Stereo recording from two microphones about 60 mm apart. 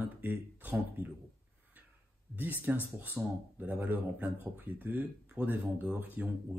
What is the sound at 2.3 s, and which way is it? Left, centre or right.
Speech, right.